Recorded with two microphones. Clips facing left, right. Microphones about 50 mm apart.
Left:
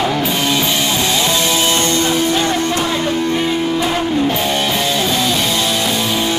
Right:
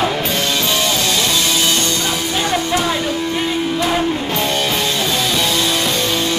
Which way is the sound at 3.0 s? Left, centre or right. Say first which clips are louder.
Left 3 dB; left.